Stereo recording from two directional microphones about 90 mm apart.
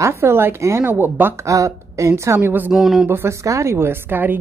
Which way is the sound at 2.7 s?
5° right (ahead or behind).